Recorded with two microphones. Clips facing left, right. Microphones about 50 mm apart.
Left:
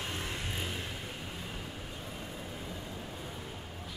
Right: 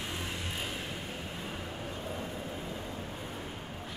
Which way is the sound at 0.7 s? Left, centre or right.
Centre.